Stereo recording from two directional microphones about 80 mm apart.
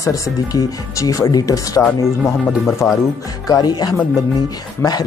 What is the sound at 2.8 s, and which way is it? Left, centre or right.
Speech, left.